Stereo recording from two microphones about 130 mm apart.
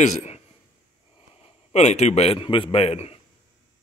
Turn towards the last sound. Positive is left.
turn(degrees=50)  # may be behind; listen again after turning